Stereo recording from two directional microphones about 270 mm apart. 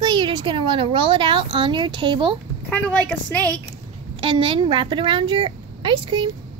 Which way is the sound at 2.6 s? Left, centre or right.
Centre.